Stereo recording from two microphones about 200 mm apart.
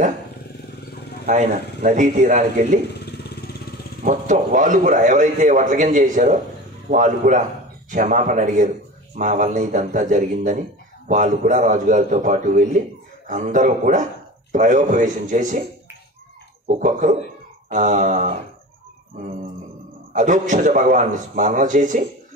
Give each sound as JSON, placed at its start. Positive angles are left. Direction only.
{"t": 1.2, "sound": "a man's voice", "side_deg": -40}
{"t": 3.1, "sound": "motorcycle", "side_deg": 55}
{"t": 4.0, "sound": "a man's voice", "side_deg": -40}
{"t": 16.6, "sound": "a man's voice", "side_deg": -40}
{"t": 20.1, "sound": "a man's voice", "side_deg": -40}